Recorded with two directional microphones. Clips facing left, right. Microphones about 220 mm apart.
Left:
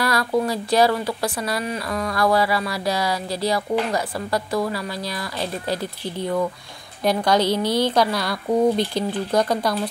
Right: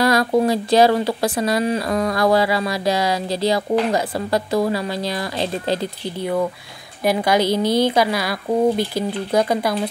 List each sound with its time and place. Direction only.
0.0 s speech: 20° right (ahead or behind)
7.0 s speech: 10° right (ahead or behind)